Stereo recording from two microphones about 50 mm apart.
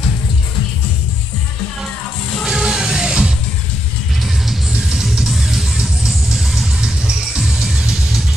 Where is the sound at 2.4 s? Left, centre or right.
Centre.